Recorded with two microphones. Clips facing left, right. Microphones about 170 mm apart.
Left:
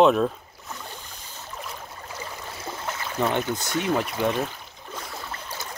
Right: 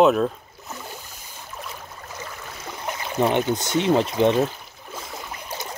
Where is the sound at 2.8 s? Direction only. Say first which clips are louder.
Right 4 dB; 20° right (ahead or behind).